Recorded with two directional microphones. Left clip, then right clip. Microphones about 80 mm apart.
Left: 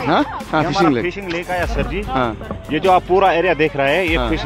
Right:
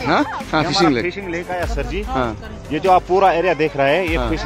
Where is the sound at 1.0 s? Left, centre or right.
Left.